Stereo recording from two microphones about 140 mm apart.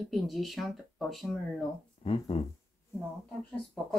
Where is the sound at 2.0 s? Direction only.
45° left (ahead or behind).